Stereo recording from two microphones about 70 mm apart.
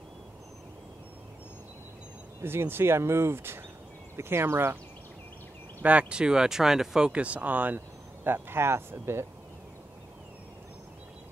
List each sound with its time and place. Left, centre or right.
2.4 s speech: right
5.8 s speech: right
7.1 s speech: centre; by 9.2 s right